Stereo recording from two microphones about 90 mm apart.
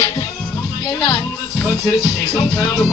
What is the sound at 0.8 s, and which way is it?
Music, 50° left (ahead or behind).